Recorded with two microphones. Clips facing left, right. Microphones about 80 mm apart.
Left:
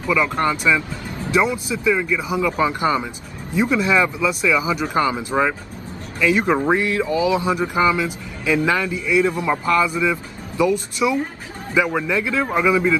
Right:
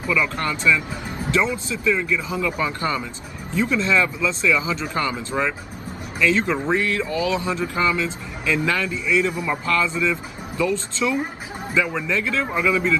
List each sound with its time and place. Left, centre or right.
0.1 s a man's voice: left